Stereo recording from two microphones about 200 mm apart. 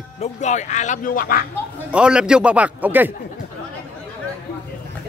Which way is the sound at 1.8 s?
5° right (ahead or behind).